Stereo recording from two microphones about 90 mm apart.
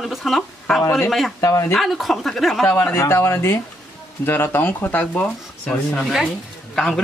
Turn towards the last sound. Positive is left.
turn(degrees=5)  # may be behind; listen again after turning